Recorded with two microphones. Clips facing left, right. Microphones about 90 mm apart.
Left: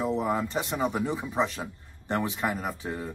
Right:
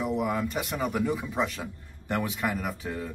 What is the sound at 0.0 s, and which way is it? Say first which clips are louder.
A man's voice: left 1 dB; 30° left (ahead or behind).